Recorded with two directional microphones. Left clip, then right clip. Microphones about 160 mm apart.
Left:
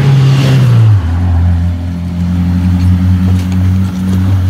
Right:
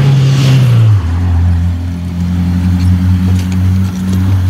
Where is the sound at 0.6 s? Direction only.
55° left (ahead or behind).